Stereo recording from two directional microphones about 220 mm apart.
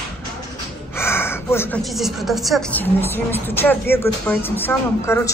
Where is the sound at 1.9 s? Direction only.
Centre (ahead or behind).